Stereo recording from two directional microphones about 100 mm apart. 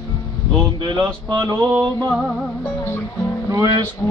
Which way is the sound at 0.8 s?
50° right (ahead or behind).